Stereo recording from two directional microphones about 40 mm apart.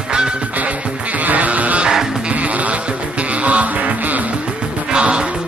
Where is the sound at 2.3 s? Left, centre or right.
Right.